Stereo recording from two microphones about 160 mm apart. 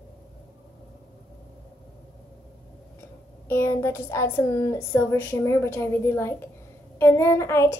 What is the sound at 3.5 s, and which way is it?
Speech, 15° left (ahead or behind).